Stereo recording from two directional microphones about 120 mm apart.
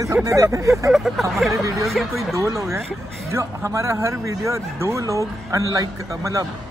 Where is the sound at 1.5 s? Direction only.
25° right (ahead or behind).